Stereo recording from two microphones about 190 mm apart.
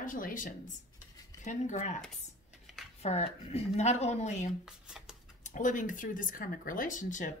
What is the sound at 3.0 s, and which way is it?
A woman's voice, 35° left (ahead or behind).